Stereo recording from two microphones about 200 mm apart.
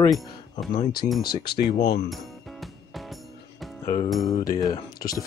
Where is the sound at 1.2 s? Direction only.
20° left (ahead or behind).